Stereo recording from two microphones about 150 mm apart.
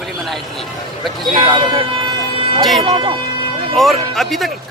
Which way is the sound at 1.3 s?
35° right (ahead or behind).